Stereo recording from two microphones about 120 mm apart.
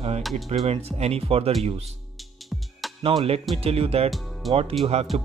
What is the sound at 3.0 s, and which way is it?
Speech, 55° right (ahead or behind).